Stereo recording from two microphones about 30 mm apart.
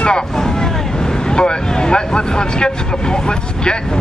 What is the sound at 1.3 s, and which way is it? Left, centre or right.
Speech, left.